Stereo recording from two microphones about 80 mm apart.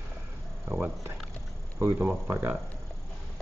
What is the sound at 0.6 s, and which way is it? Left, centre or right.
Speech, right.